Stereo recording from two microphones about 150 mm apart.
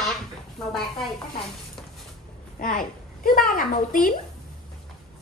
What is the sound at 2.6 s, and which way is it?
A child's voice, 70° left (ahead or behind).